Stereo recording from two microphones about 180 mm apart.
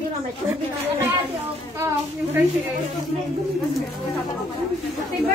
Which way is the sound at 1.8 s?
15° right (ahead or behind).